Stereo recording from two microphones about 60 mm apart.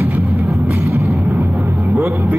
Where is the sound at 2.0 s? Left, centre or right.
Right.